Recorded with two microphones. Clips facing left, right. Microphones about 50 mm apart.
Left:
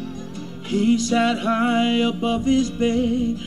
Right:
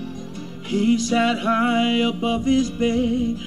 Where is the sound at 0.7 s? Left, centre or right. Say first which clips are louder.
Even; right.